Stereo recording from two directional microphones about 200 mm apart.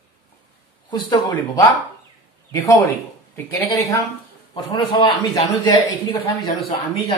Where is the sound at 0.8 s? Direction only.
20° left (ahead or behind).